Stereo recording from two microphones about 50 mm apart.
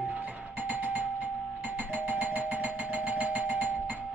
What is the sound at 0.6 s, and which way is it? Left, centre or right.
Music, right.